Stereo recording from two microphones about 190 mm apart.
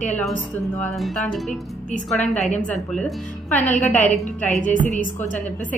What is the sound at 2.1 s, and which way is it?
Speech, 35° left (ahead or behind).